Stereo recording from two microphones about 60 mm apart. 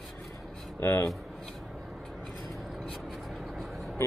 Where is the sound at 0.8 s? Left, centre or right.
Left.